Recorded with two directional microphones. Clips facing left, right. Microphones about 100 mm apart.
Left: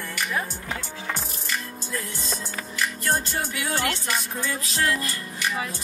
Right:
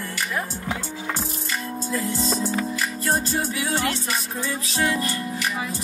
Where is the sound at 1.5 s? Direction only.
35° right (ahead or behind).